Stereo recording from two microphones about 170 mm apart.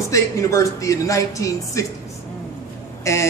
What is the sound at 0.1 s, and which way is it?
Speech, 20° left (ahead or behind).